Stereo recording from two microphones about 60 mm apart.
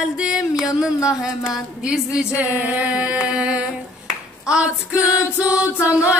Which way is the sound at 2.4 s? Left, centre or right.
Right.